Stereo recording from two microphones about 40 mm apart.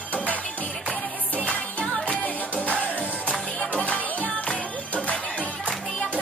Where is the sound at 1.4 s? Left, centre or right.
Left.